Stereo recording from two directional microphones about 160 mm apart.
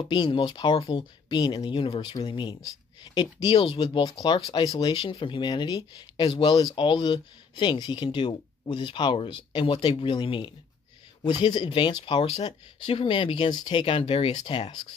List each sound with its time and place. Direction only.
0.1 s speech: 30° left (ahead or behind)